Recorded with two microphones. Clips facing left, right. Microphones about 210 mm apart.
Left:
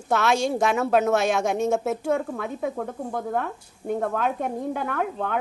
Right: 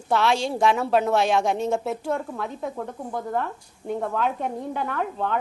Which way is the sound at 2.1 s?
60° left (ahead or behind).